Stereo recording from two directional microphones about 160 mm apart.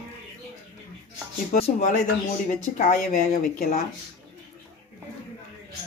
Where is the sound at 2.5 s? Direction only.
55° left (ahead or behind).